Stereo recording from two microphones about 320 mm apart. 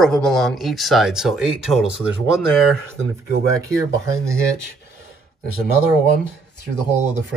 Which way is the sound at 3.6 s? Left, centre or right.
Centre.